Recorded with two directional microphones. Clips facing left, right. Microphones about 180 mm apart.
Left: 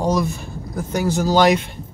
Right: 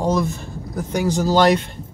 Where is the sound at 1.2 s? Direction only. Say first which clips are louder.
Even; 30° right (ahead or behind).